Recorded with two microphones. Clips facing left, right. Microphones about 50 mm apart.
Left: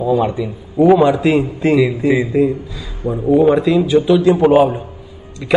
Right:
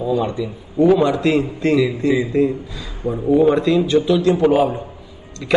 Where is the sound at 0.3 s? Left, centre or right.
Centre.